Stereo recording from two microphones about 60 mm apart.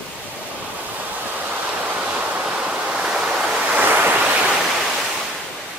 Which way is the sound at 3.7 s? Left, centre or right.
Right.